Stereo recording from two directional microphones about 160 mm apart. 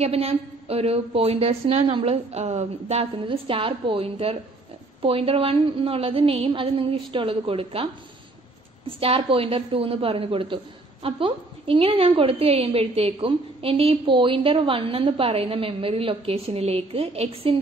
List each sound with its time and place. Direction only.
0.0 s a woman's voice: 40° right (ahead or behind)